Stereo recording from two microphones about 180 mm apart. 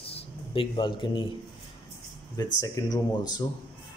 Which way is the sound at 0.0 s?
30° left (ahead or behind).